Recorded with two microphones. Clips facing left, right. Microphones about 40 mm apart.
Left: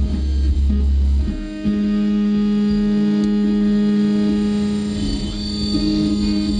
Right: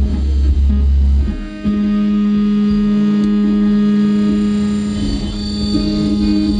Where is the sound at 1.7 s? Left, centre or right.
Centre.